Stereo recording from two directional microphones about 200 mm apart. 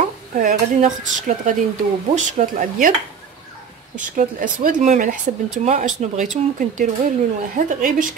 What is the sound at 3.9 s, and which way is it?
Speech, 40° right (ahead or behind).